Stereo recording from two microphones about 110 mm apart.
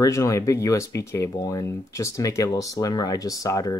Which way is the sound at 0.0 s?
30° left (ahead or behind).